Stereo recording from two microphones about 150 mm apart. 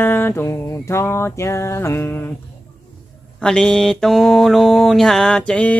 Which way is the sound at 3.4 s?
5° left (ahead or behind).